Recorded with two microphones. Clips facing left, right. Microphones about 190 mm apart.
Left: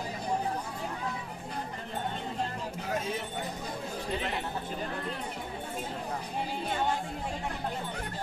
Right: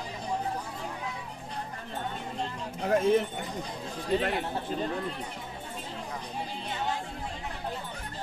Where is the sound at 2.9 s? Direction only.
55° right (ahead or behind).